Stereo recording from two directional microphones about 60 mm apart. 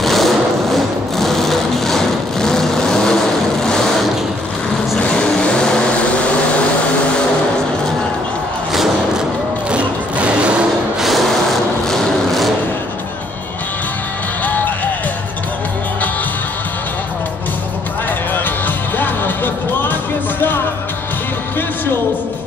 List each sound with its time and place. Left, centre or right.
0.0 s sewing machine: centre
4.9 s vehicle: centre
9.7 s music: centre
11.0 s sewing machine: centre
14.4 s music: left
18.9 s music: left